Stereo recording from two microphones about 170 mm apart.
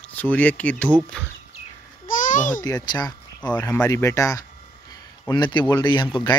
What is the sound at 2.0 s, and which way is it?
Babbling, 50° left (ahead or behind).